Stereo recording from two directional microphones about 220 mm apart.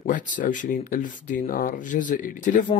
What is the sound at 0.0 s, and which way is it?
A man's voice, 35° left (ahead or behind).